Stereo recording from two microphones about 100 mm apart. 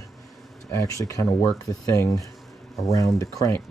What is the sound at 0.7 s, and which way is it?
Speech, 30° left (ahead or behind).